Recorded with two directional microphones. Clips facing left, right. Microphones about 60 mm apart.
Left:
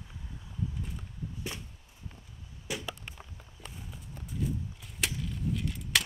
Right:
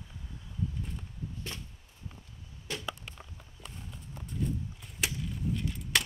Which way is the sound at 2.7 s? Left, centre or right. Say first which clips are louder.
Left 2 dB; centre.